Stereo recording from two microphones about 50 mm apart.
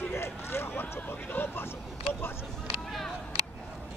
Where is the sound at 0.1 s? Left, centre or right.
Left.